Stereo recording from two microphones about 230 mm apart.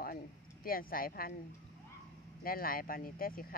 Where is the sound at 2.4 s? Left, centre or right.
Left.